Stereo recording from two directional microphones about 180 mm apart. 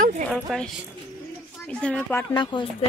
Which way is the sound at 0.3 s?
5° left (ahead or behind).